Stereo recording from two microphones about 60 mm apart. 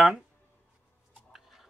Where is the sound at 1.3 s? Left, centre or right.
Centre.